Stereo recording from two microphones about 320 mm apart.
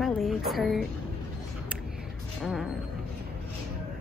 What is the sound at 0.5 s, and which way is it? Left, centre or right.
Speech, centre.